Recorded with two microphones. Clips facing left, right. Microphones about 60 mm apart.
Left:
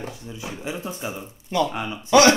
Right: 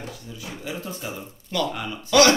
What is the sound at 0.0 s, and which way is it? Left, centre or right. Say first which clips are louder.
Speech: left 3 dB; left.